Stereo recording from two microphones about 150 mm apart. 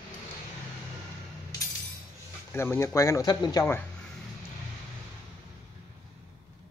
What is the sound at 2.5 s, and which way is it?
Speech, 15° left (ahead or behind).